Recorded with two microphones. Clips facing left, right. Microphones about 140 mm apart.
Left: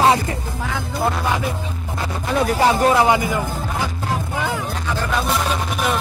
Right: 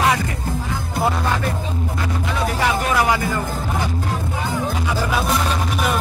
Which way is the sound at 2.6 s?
30° left (ahead or behind).